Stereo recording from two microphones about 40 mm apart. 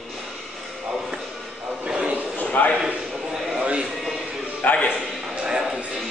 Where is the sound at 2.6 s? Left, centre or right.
Left.